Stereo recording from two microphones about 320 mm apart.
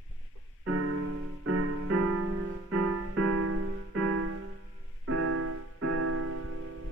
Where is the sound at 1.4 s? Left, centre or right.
Right.